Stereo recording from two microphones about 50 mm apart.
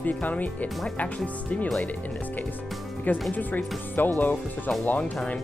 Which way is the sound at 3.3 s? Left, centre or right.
Left.